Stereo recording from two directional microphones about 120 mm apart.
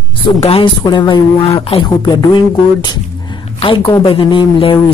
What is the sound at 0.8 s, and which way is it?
Speech, 40° left (ahead or behind).